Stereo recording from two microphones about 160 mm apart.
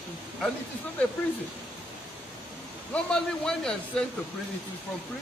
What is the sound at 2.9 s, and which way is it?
A man's voice, 5° left (ahead or behind).